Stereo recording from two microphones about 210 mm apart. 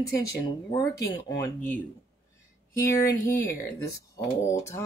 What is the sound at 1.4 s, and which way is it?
Speech, 5° left (ahead or behind).